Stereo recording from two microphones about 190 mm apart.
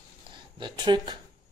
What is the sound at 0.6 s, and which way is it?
Speech, 25° right (ahead or behind).